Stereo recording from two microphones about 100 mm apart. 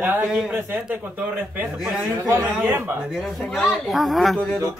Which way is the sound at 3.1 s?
Centre (ahead or behind).